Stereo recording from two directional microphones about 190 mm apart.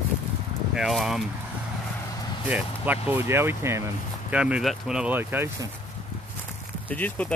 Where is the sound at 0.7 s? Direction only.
Centre (ahead or behind).